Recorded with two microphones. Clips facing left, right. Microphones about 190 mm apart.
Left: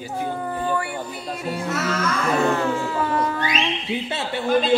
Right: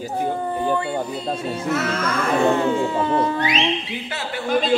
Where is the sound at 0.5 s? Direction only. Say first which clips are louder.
Right 3 dB; 20° right (ahead or behind).